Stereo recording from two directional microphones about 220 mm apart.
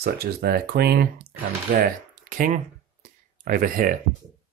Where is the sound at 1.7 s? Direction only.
40° right (ahead or behind).